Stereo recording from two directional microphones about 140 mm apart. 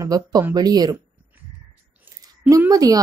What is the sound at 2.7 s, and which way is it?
Speech, 25° right (ahead or behind).